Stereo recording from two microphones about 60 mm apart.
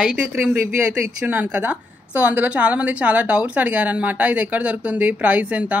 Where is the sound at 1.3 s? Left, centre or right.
Right.